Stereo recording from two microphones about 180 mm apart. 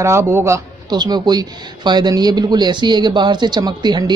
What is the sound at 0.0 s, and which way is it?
Speech, 15° right (ahead or behind).